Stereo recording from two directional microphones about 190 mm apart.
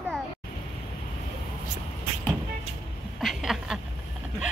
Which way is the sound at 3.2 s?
Centre (ahead or behind).